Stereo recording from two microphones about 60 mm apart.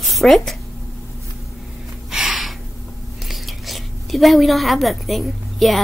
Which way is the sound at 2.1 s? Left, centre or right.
Centre.